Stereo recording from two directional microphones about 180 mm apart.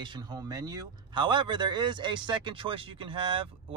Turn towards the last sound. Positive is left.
turn(degrees=-30)  # may be behind; listen again after turning